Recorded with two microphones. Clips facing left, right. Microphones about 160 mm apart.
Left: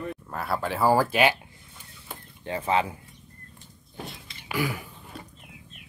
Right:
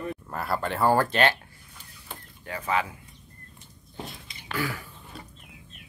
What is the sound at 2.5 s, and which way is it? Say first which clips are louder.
Speech: left 3 dB; 25° left (ahead or behind).